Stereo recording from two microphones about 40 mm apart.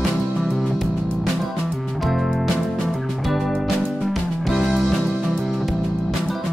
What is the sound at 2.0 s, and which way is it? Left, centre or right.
Music, centre.